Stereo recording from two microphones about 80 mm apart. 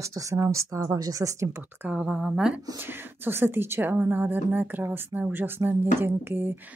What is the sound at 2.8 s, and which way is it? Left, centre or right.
A woman's voice, right.